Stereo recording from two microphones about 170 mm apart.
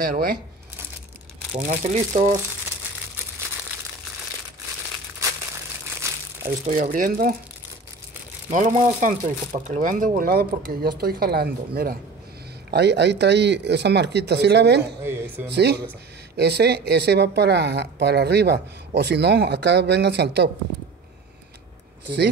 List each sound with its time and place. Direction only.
0.0 s speech: 55° right (ahead or behind)
1.6 s speech: 45° right (ahead or behind)
6.4 s speech: 50° right (ahead or behind)
8.5 s speech: 50° right (ahead or behind)
12.7 s speech: 85° right
15.0 s speech: 15° right (ahead or behind)
15.5 s speech: 75° right (ahead or behind)